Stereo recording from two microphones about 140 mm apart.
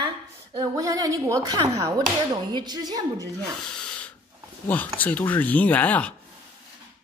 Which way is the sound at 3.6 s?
5° left (ahead or behind).